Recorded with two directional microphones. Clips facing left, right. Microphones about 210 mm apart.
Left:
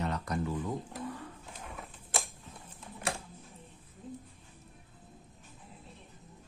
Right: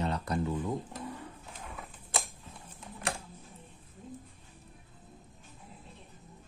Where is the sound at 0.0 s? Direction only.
30° right (ahead or behind).